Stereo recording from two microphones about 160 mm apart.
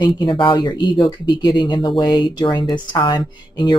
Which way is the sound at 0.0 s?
30° left (ahead or behind).